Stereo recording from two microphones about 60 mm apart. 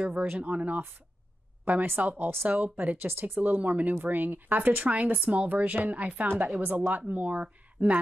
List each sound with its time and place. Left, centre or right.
0.1 s speech: right